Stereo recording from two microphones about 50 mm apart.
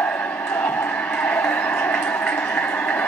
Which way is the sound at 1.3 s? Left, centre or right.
Left.